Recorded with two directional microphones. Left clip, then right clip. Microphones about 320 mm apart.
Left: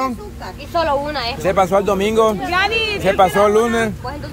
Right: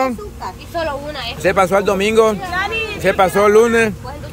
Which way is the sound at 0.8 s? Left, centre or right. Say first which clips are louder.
Left 4 dB; centre.